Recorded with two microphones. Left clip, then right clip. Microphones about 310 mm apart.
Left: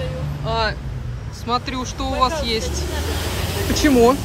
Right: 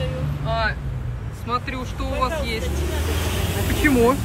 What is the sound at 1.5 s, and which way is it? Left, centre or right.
Speech, centre.